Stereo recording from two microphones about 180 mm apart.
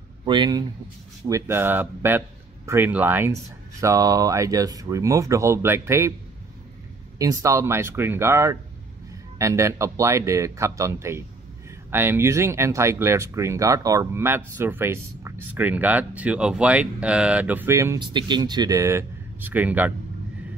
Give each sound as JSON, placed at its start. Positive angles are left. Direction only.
{"t": 0.2, "sound": "speech", "side_deg": -25}
{"t": 7.2, "sound": "speech", "side_deg": -20}
{"t": 17.9, "sound": "speech", "side_deg": -25}